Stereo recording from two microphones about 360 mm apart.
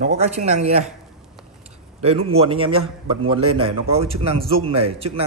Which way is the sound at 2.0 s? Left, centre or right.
Centre.